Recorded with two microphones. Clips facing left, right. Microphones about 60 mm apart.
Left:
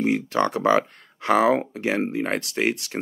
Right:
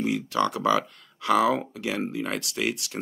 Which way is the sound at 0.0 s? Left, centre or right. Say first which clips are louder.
Left 3 dB; left.